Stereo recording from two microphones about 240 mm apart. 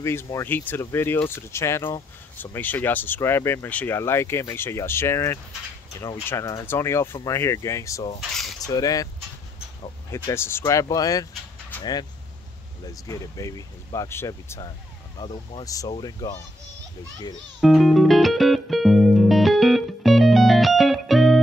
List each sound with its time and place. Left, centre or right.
0.0 s speech: centre
10.1 s speech: centre
17.6 s music: centre